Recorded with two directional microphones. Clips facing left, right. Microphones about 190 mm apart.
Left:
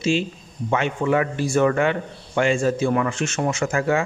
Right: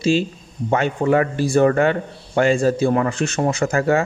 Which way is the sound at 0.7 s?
40° right (ahead or behind).